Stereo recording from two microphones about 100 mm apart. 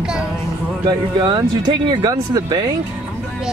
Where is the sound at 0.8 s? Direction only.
45° right (ahead or behind).